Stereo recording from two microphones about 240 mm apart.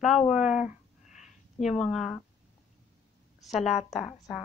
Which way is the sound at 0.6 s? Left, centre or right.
Left.